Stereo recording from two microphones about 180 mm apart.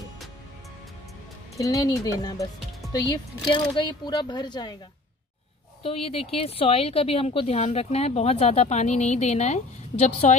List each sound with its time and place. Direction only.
1.6 s speech: 20° left (ahead or behind)
5.8 s a woman's voice: 30° left (ahead or behind)